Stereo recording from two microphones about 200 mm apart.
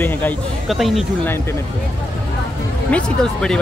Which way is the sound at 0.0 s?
10° left (ahead or behind).